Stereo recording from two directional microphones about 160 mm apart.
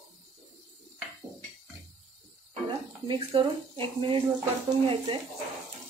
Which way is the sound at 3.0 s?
30° right (ahead or behind).